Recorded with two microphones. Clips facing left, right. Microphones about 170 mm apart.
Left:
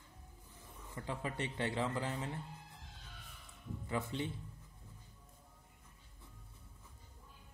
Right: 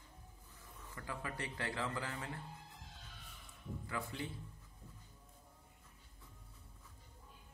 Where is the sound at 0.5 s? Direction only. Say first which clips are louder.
Left 4 dB; 20° left (ahead or behind).